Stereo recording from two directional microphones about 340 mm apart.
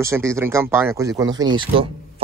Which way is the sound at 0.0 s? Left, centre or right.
Centre.